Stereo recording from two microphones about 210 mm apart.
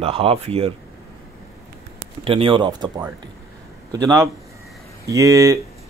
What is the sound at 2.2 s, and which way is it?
Speech, 25° right (ahead or behind).